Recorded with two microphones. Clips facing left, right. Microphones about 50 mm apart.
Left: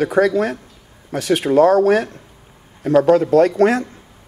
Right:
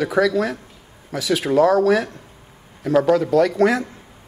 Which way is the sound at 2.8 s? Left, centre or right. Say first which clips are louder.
Left 3 dB; left.